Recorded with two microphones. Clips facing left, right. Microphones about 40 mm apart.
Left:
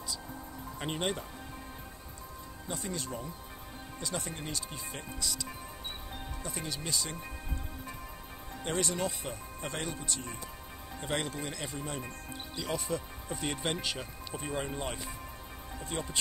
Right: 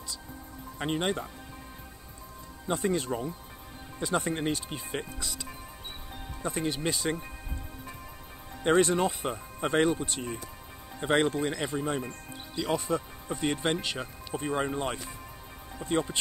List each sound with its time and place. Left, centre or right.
0.7 s speech: centre
2.7 s speech: right
5.2 s speech: right
8.6 s speech: right
12.0 s speech: centre